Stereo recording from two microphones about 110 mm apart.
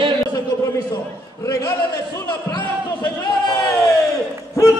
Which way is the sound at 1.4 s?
25° left (ahead or behind).